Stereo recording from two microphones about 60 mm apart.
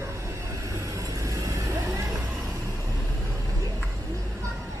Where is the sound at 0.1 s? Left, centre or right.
Right.